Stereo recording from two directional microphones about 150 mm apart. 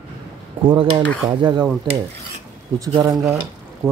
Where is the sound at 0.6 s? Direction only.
35° right (ahead or behind).